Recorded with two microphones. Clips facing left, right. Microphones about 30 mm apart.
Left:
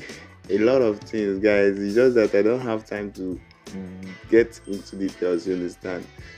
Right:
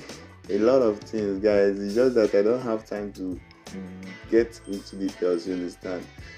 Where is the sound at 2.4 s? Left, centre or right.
Left.